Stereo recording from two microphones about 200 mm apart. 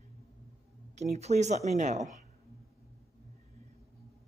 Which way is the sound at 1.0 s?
35° right (ahead or behind).